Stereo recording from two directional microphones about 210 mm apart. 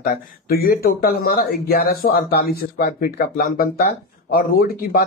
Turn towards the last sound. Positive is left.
turn(degrees=45)  # may be behind; listen again after turning